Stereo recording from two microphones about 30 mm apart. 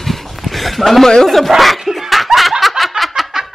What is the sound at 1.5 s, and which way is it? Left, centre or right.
Speech, centre.